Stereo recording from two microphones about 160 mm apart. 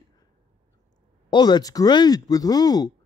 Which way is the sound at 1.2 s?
25° left (ahead or behind).